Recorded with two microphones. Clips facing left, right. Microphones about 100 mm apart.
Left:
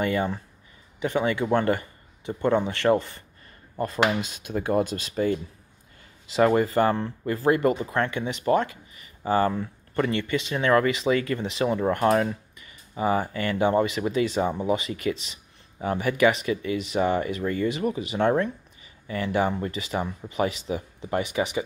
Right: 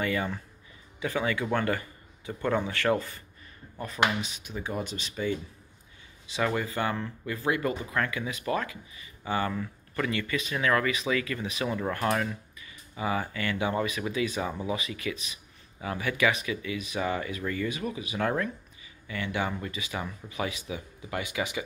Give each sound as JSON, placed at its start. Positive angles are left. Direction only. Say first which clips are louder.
{"t": 0.0, "sound": "a man's voice", "louder": "left 5 dB", "side_deg": 30}
{"t": 3.7, "sound": "speech", "louder": "left 9 dB", "side_deg": 35}
{"t": 4.6, "sound": "speech", "louder": "left 10 dB", "side_deg": 55}